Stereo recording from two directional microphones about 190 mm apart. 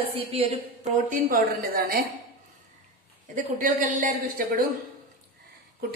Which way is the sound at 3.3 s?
40° right (ahead or behind).